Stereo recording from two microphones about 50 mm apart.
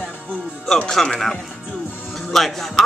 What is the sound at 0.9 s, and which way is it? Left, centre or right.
Speech, centre.